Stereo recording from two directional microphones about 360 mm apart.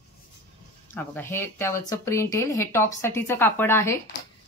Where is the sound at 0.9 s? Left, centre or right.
Centre.